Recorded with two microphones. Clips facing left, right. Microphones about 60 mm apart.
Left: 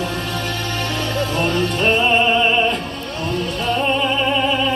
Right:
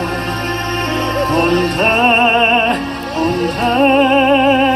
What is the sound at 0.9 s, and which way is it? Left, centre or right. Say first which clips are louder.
Music: right 7 dB; right.